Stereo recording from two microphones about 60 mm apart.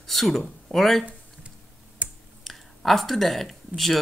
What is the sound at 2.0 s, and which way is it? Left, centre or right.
Computer keyboard, right.